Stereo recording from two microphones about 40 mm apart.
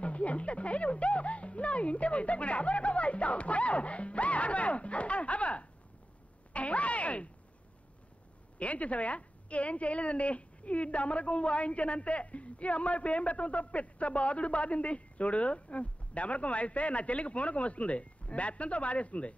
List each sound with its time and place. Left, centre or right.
0.0 s a woman's voice: left
8.5 s a woman's voice: left